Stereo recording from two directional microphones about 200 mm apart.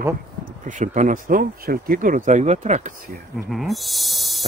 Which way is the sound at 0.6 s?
40° right (ahead or behind).